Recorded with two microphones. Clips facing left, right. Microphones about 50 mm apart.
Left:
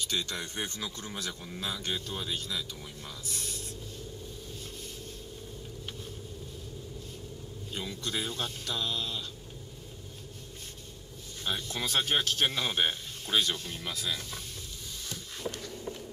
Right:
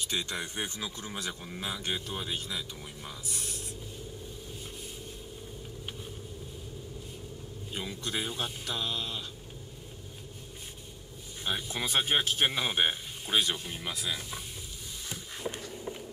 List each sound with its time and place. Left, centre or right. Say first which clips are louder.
0.0 s a man's voice: even; centre
7.7 s a man's voice: even; centre
11.4 s a man's voice: even; centre